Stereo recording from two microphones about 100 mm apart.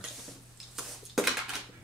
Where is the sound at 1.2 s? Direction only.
Centre (ahead or behind).